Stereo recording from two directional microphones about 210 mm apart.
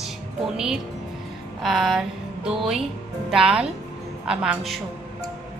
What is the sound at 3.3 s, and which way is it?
A woman's voice, 5° right (ahead or behind).